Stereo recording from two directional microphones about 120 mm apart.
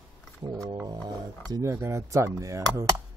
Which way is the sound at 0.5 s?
30° right (ahead or behind).